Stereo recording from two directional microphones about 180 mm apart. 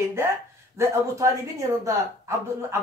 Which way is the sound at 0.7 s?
15° right (ahead or behind).